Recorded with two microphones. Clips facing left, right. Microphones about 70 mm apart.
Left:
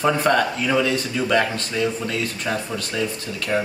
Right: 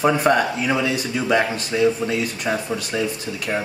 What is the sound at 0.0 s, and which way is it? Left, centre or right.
Speech, centre.